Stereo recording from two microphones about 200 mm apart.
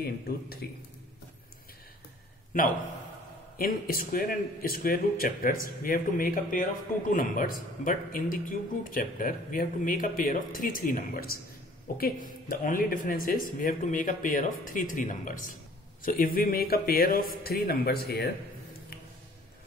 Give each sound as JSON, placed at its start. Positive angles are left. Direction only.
{"t": 0.0, "sound": "speech", "side_deg": 50}
{"t": 3.5, "sound": "speech", "side_deg": 45}